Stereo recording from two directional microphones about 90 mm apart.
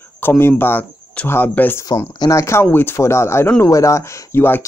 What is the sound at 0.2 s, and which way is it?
Speech, 25° left (ahead or behind).